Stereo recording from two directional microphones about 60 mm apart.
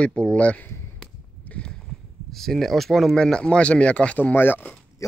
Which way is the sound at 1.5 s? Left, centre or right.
Centre.